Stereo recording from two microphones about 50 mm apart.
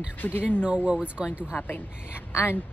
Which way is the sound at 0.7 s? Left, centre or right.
Right.